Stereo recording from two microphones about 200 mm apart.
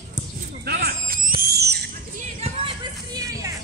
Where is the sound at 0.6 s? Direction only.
50° right (ahead or behind).